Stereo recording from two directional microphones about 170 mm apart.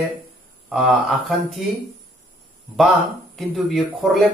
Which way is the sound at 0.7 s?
Centre (ahead or behind).